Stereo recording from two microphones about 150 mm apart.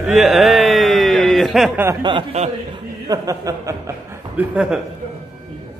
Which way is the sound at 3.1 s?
25° right (ahead or behind).